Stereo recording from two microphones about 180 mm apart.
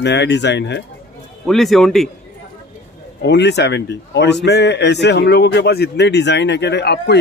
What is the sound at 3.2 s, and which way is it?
Speech, 70° left (ahead or behind).